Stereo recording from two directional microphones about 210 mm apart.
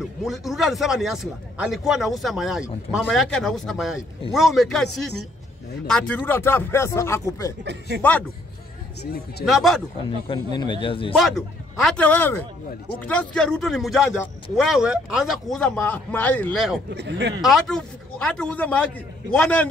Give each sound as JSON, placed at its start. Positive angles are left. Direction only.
{"t": 0.0, "sound": "a man's voice", "side_deg": 0}
{"t": 9.4, "sound": "a man's voice", "side_deg": 0}
{"t": 10.2, "sound": "speech", "side_deg": 20}
{"t": 11.1, "sound": "a man's voice", "side_deg": 0}
{"t": 16.9, "sound": "speech", "side_deg": -55}
{"t": 17.4, "sound": "a man's voice", "side_deg": 0}